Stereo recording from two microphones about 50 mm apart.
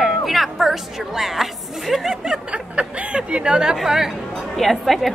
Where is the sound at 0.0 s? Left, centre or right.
Centre.